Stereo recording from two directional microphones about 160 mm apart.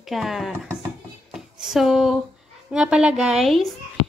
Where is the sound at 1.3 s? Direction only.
5° right (ahead or behind).